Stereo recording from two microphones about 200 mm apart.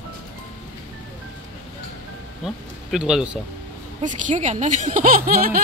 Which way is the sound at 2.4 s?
Centre (ahead or behind).